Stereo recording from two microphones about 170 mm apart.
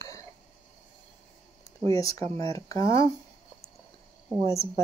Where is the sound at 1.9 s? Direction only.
20° left (ahead or behind).